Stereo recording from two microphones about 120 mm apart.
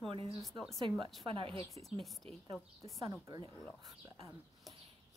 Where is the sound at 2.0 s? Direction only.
Centre (ahead or behind).